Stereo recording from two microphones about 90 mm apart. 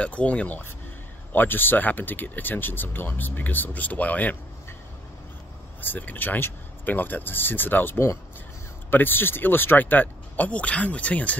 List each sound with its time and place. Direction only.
0.0 s speech: 15° left (ahead or behind)
5.8 s speech: 20° left (ahead or behind)